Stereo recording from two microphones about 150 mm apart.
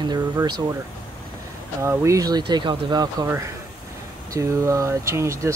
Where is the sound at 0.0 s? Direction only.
30° right (ahead or behind).